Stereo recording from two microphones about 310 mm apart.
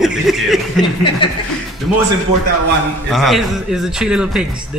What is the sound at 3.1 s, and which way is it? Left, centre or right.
A man's voice, centre.